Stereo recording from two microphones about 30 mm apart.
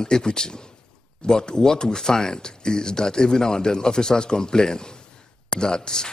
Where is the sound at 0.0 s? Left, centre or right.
Left.